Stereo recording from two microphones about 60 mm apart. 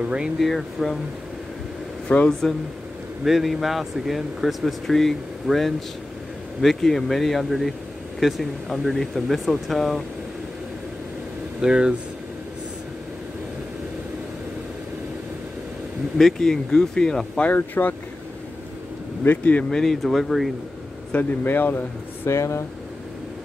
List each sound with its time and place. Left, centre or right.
0.0 s speech: centre
0.4 s speech: centre
2.0 s speech: centre
3.3 s speech: centre
11.6 s speech: centre
16.2 s speech: centre
17.4 s speech: left
19.2 s speech: left
19.7 s speech: centre
21.1 s speech: left
21.5 s speech: left
22.3 s speech: left